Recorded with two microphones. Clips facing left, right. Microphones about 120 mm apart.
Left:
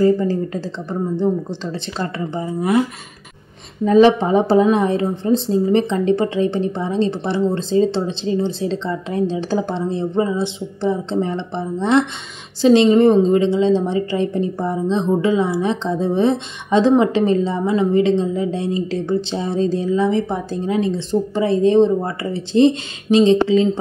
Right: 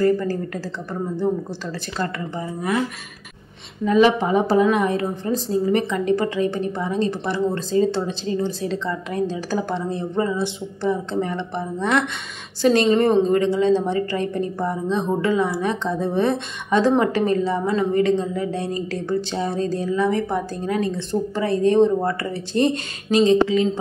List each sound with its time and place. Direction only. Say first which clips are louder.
0.0 s a woman's voice: left 4 dB; 20° left (ahead or behind)
3.8 s a woman's voice: left 4 dB; 35° left (ahead or behind)